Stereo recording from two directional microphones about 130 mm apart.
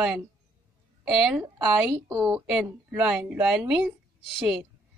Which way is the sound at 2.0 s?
25° right (ahead or behind).